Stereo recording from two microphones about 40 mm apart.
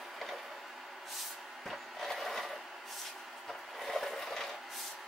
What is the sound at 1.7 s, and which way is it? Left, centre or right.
Vehicle, centre.